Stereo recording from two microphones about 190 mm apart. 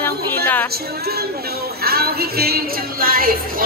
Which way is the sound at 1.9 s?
55° right (ahead or behind).